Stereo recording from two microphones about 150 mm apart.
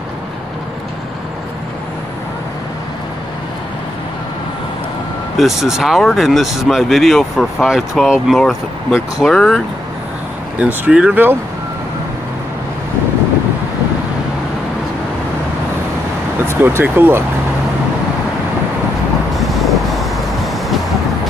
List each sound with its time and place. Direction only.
5.4 s speech: centre (ahead or behind)
10.6 s speech: 5° right (ahead or behind)
16.4 s speech: 15° right (ahead or behind)
19.3 s vehicle: centre (ahead or behind)